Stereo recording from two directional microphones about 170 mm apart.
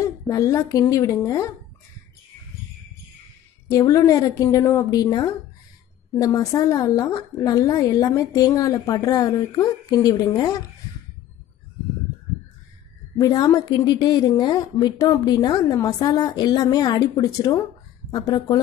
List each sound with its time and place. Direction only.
0.0 s a woman's voice: 20° left (ahead or behind)
3.7 s a woman's voice: 20° left (ahead or behind)
13.2 s a woman's voice: 20° left (ahead or behind)